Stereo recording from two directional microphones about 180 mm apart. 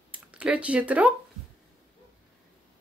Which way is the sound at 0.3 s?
5° right (ahead or behind).